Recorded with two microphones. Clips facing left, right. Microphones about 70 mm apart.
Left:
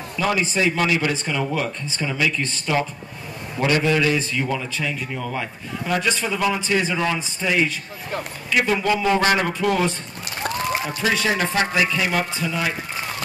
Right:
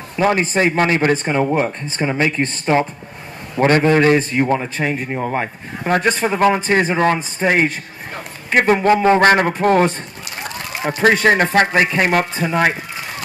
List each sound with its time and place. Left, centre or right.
0.1 s a man's voice: right